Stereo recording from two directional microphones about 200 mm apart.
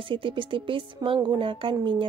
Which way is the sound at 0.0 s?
25° right (ahead or behind).